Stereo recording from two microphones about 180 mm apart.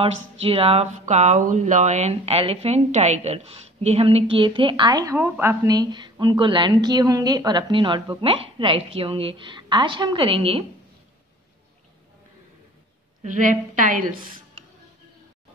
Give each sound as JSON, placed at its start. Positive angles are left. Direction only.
{"t": 0.0, "sound": "speech", "side_deg": -35}
{"t": 13.2, "sound": "a woman's voice", "side_deg": -45}